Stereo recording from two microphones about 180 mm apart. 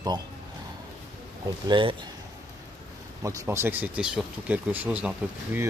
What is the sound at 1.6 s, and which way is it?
Speech, 25° right (ahead or behind).